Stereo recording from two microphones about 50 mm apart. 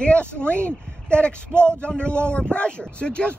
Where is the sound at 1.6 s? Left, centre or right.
Left.